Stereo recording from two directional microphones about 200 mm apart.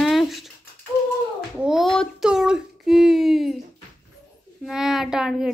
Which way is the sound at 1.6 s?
Centre (ahead or behind).